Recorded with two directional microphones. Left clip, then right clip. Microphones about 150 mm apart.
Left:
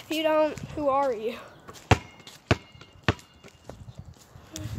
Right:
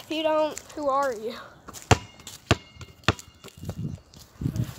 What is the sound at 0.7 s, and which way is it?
Speech, 10° left (ahead or behind).